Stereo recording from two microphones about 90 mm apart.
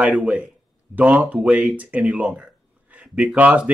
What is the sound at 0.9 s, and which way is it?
Speech, 15° right (ahead or behind).